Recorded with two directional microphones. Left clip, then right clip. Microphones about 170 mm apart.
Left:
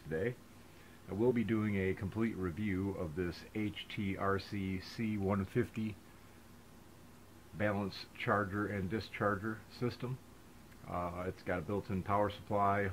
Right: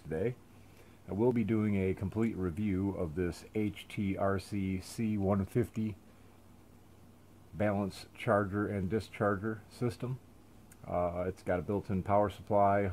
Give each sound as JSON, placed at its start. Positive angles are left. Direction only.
{"t": 1.0, "sound": "speech", "side_deg": -55}
{"t": 7.5, "sound": "speech", "side_deg": -55}
{"t": 8.3, "sound": "speech", "side_deg": -45}
{"t": 9.2, "sound": "speech", "side_deg": -40}
{"t": 9.8, "sound": "speech", "side_deg": -60}